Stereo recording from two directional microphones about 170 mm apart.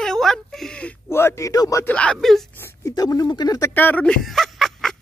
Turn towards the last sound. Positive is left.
turn(degrees=0)  # may be behind; listen again after turning